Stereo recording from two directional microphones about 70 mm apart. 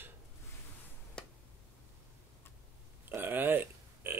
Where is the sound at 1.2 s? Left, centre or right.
Centre.